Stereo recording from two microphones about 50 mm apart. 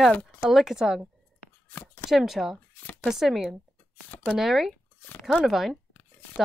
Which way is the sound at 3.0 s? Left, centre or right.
Centre.